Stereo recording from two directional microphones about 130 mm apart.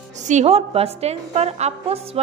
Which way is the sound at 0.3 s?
55° right (ahead or behind).